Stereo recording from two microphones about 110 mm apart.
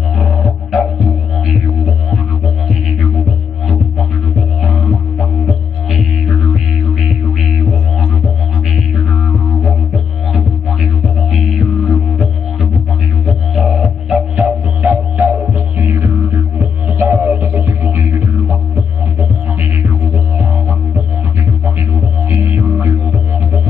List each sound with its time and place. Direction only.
0.2 s music: centre (ahead or behind)
4.6 s music: centre (ahead or behind)
13.6 s music: 5° right (ahead or behind); by 18.6 s 20° right (ahead or behind)
21.6 s music: 20° right (ahead or behind)